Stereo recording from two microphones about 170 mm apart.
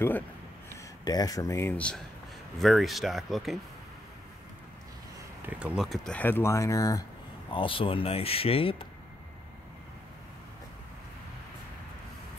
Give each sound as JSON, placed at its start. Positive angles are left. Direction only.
{"t": 0.7, "sound": "speech", "side_deg": 20}
{"t": 5.4, "sound": "speech", "side_deg": -10}
{"t": 7.5, "sound": "speech", "side_deg": 30}